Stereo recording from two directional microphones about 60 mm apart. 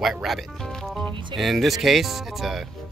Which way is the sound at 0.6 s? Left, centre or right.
Centre.